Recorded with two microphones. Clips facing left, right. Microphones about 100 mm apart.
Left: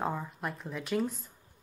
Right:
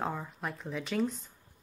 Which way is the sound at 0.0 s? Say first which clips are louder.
Left 1 dB; centre (ahead or behind).